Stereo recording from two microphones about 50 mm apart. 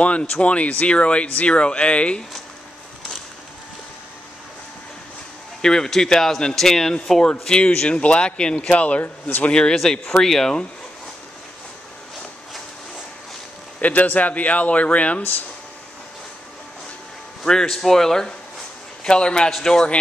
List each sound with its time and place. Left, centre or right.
0.0 s speech: left
5.6 s speech: centre
9.5 s speech: centre
13.7 s speech: left
17.5 s speech: centre